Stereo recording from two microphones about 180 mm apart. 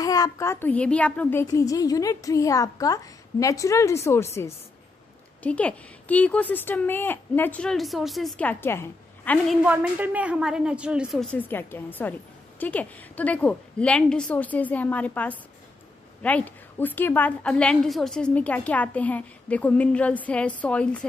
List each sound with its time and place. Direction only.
0.0 s a woman's voice: 20° left (ahead or behind)
5.4 s a woman's voice: 5° left (ahead or behind)
9.6 s a woman's voice: 10° right (ahead or behind); by 21.0 s 5° left (ahead or behind)